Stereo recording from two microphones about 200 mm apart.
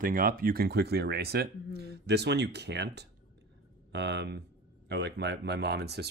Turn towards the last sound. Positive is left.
turn(degrees=-55)  # may be behind; listen again after turning